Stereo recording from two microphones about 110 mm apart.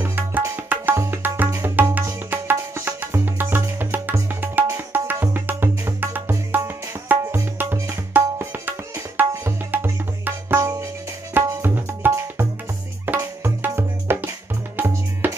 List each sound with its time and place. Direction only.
0.0 s music: 15° right (ahead or behind)
0.7 s tabla: 15° right (ahead or behind)
1.0 s music: 20° right (ahead or behind)
11.3 s tabla: 20° right (ahead or behind)
13.2 s music: 20° right (ahead or behind)